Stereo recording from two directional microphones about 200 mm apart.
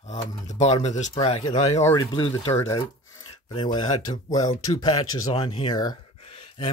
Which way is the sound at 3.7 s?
20° left (ahead or behind).